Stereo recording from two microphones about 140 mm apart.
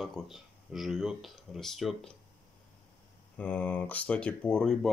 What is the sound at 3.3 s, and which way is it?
Speech, 10° left (ahead or behind).